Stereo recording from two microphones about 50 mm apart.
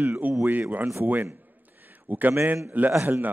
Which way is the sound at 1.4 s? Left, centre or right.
Right.